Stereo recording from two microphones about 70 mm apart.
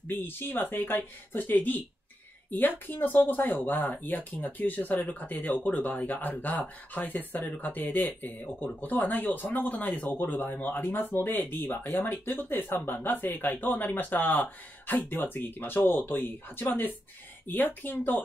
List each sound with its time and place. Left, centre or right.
0.0 s speech: left